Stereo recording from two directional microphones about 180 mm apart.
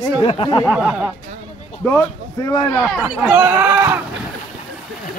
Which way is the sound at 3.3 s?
15° right (ahead or behind).